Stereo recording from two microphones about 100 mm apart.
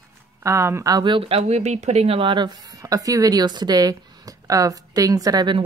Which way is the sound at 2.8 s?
35° right (ahead or behind).